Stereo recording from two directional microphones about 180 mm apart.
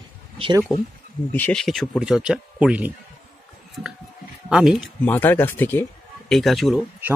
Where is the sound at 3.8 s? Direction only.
Centre (ahead or behind).